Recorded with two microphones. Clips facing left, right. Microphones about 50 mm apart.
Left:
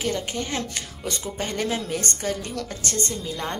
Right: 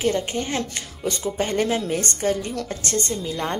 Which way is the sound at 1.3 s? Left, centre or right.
Right.